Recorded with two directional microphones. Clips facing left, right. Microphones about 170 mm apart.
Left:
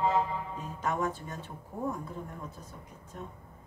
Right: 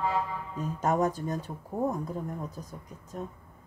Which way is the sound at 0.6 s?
40° right (ahead or behind).